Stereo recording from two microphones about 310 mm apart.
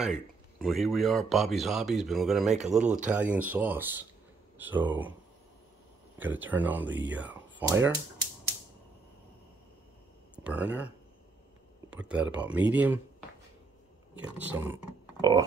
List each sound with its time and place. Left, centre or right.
0.0 s speech: centre
2.8 s speech: right
3.1 s speech: centre
6.1 s speech: centre
10.3 s speech: centre
11.9 s speech: centre
14.1 s speech: centre